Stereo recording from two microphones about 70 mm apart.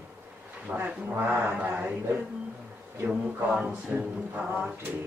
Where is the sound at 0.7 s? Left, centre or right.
Right.